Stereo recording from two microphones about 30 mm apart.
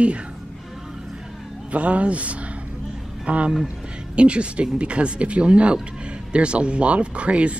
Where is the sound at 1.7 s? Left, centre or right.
Right.